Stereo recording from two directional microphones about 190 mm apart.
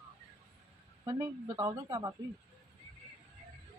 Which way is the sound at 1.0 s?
20° right (ahead or behind).